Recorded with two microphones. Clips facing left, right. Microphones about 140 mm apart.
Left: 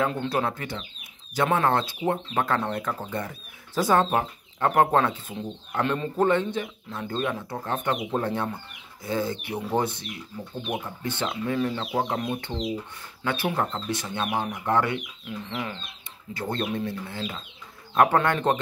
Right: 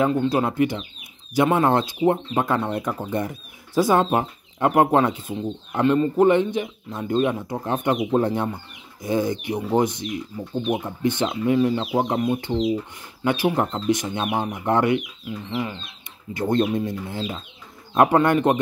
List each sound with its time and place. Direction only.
0.3 s speech: 15° right (ahead or behind)
15.2 s speech: 5° right (ahead or behind)
16.3 s speech: 20° right (ahead or behind)